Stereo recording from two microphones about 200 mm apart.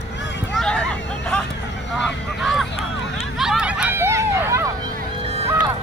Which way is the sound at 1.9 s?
Centre (ahead or behind).